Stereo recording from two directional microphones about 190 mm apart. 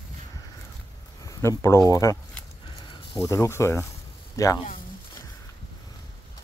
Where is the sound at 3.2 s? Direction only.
15° left (ahead or behind).